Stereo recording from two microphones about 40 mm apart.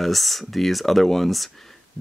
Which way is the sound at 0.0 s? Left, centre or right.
Centre.